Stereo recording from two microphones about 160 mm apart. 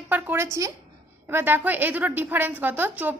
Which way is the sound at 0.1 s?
15° right (ahead or behind).